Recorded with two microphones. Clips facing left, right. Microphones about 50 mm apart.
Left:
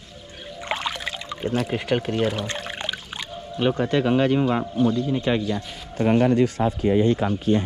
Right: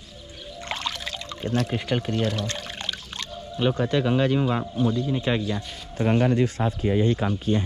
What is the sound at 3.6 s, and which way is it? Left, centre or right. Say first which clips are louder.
A man's voice: left 2 dB; left.